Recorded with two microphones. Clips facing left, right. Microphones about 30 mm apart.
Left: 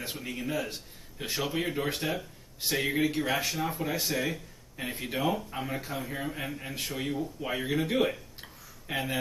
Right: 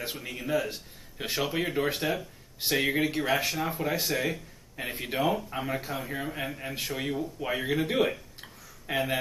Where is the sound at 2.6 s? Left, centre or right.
Right.